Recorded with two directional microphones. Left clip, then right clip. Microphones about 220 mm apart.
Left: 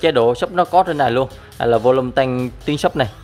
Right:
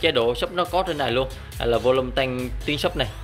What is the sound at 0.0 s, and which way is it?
Speech, 25° left (ahead or behind).